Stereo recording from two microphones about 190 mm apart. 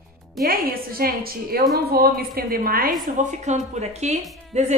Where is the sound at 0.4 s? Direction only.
50° right (ahead or behind).